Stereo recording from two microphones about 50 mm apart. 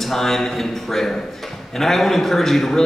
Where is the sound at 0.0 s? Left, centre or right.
Centre.